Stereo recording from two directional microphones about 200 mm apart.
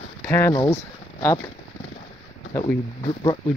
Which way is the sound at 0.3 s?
15° left (ahead or behind).